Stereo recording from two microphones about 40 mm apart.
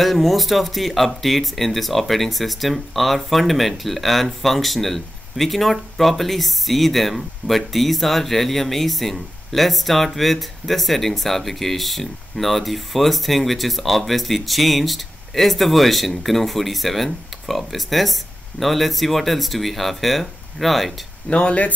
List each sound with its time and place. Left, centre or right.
0.0 s speech: centre
21.3 s speech: left